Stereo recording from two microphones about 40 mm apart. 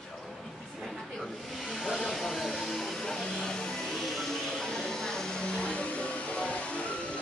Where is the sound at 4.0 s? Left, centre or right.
Centre.